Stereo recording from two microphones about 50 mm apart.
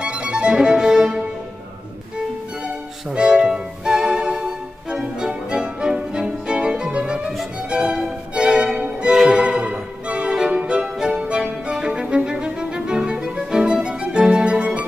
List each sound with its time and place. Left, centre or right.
0.0 s violin: right
3.1 s music: centre
8.4 s violin: centre
9.3 s music: right